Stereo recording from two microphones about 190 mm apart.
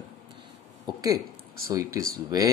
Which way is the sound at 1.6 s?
15° right (ahead or behind).